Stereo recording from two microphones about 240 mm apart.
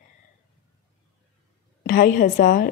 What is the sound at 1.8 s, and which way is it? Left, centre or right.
Speech, left.